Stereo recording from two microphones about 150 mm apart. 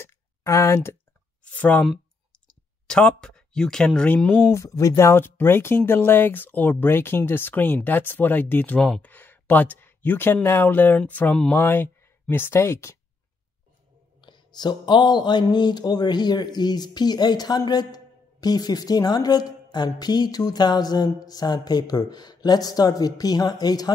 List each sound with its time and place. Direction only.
0.0 s a sound: 20° left (ahead or behind)
1.4 s speech: 10° left (ahead or behind)
14.2 s speech: 30° left (ahead or behind)